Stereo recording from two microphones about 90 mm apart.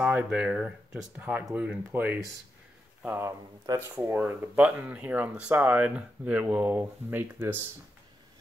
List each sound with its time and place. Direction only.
0.0 s speech: 15° right (ahead or behind)
3.2 s speech: 35° right (ahead or behind)
4.0 s speech: 25° right (ahead or behind)